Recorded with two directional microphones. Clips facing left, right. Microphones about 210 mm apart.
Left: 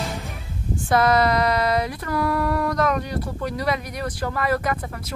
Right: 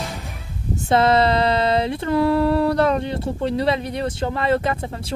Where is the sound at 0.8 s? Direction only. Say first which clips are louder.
Right 2 dB; 25° right (ahead or behind).